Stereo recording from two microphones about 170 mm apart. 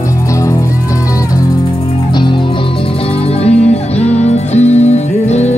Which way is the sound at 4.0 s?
40° left (ahead or behind).